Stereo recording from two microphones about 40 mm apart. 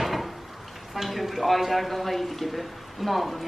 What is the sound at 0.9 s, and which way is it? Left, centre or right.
Speech, centre.